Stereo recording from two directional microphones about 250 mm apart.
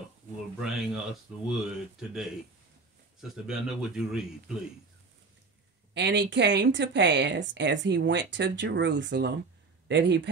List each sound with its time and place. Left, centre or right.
0.6 s speech: centre
5.9 s speech: right